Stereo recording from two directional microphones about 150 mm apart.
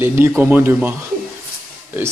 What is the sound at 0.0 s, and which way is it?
Speech, 15° right (ahead or behind).